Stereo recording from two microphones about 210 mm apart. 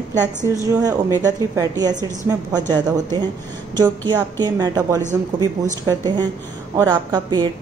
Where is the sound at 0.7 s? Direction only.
15° right (ahead or behind).